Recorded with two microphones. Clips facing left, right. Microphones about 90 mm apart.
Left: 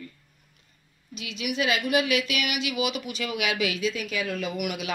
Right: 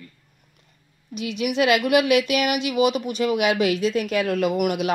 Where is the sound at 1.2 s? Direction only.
60° right (ahead or behind).